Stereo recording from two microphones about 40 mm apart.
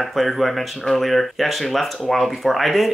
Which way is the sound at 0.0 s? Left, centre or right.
Centre.